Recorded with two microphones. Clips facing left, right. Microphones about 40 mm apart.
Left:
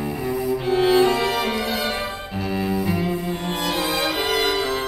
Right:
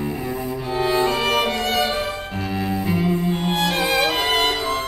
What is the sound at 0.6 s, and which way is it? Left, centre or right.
Cello, left.